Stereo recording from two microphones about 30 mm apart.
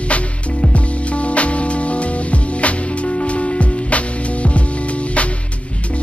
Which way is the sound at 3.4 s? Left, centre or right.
Left.